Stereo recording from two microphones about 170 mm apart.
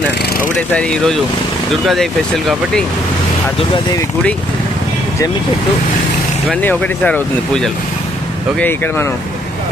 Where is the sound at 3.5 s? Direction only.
30° left (ahead or behind).